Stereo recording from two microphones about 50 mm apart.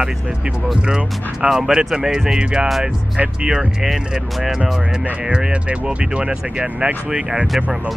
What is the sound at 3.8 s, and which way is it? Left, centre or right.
Speech, centre.